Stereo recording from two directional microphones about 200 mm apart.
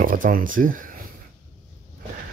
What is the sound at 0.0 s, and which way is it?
Speech, 45° right (ahead or behind).